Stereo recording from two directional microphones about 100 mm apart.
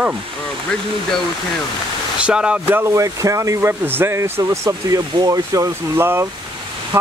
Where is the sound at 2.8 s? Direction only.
30° right (ahead or behind).